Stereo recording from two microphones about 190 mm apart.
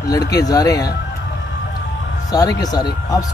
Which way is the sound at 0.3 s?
20° left (ahead or behind).